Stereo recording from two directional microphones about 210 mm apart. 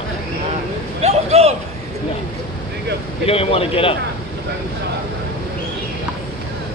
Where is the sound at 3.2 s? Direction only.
25° left (ahead or behind).